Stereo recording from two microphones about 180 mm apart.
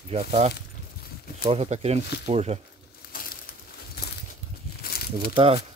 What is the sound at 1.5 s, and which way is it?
Speech, 35° right (ahead or behind).